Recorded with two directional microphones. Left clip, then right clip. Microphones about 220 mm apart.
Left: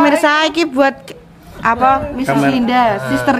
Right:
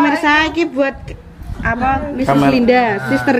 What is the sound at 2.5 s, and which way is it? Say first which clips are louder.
Speech: right 1 dB; 60° left (ahead or behind).